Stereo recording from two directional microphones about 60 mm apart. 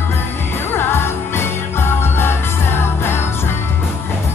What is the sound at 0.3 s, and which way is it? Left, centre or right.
Music, left.